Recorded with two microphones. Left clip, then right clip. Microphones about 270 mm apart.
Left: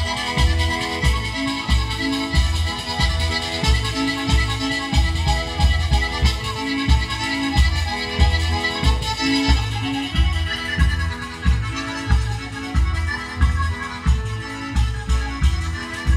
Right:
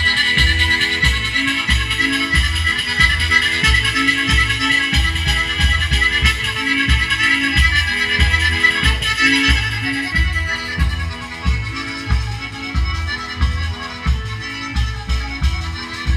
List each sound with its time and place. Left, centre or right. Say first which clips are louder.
0.0 s music: right 9 dB; left